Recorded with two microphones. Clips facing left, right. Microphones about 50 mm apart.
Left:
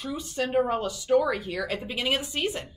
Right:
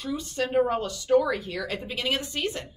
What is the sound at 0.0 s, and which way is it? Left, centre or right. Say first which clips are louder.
Speech: right 1 dB; centre.